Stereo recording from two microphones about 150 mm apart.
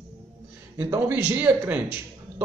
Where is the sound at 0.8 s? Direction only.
15° right (ahead or behind).